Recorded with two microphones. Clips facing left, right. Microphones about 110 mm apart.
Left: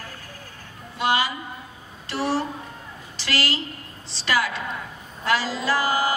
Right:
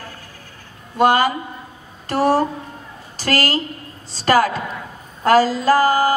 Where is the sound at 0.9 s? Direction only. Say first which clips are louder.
Right 8 dB; 50° right (ahead or behind).